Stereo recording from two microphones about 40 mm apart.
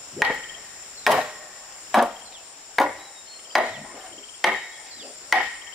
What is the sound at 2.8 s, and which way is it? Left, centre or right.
Chop, centre.